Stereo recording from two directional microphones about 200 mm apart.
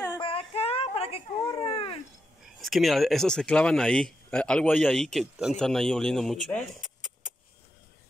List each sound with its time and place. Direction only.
0.1 s baby cry: 25° left (ahead or behind)
2.4 s speech: centre (ahead or behind)